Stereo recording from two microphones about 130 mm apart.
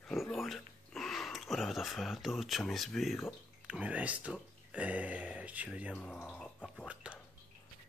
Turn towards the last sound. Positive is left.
turn(degrees=-10)  # may be behind; listen again after turning